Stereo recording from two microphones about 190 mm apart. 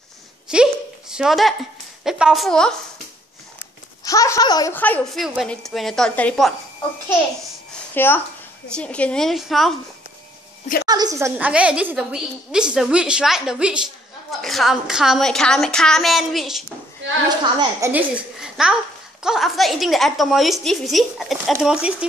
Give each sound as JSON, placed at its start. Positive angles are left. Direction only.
{"t": 0.5, "sound": "a sound", "side_deg": -5}
{"t": 2.0, "sound": "a woman's voice", "side_deg": -5}
{"t": 4.0, "sound": "speech", "side_deg": 15}
{"t": 4.7, "sound": "a woman's voice", "side_deg": 10}
{"t": 7.9, "sound": "a woman's voice", "side_deg": 10}
{"t": 10.9, "sound": "a woman's voice", "side_deg": -20}
{"t": 17.6, "sound": "a woman's voice", "side_deg": -15}